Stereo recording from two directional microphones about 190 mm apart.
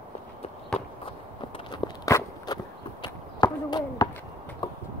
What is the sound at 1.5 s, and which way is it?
Walk, 20° left (ahead or behind).